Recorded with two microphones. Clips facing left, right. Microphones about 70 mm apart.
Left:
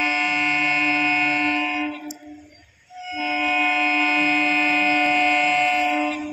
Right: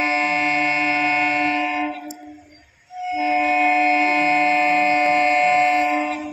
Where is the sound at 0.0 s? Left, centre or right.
Right.